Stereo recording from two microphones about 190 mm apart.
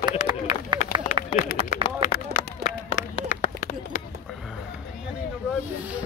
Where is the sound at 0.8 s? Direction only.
40° left (ahead or behind).